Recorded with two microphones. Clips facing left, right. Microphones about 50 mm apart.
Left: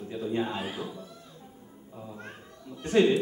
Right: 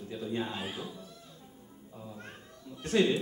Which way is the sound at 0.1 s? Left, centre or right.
Centre.